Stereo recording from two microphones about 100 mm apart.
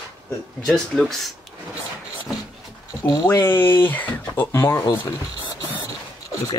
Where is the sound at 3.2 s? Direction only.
25° left (ahead or behind).